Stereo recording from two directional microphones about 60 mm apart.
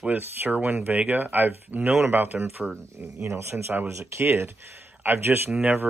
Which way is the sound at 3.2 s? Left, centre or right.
Right.